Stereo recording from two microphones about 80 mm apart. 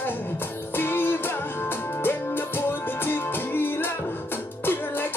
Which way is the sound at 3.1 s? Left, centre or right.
Left.